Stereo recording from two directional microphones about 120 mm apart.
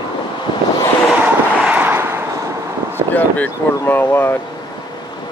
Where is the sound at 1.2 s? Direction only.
10° right (ahead or behind).